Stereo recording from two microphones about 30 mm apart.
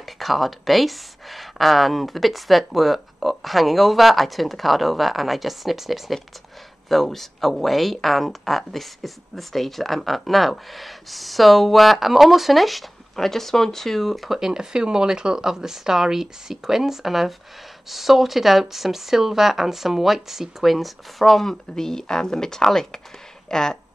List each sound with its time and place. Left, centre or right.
0.0 s speech: centre
6.9 s speech: centre
13.1 s speech: centre
14.4 s speech: centre
21.7 s speech: centre